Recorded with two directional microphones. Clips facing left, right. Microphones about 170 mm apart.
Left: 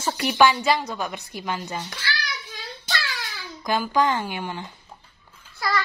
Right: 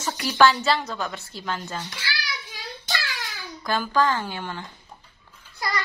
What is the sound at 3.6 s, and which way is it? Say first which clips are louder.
A woman's voice: left 1 dB; 15° left (ahead or behind).